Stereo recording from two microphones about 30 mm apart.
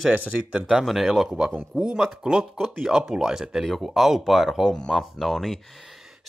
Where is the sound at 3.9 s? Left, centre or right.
Centre.